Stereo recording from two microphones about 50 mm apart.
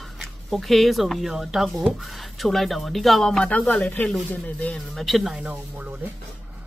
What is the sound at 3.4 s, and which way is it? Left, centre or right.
Speech, left.